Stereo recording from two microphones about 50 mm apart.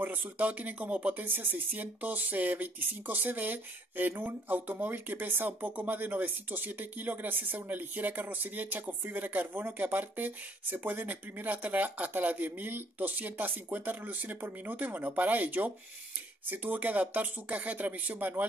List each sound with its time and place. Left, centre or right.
0.0 s speech: right
1.2 s speech: right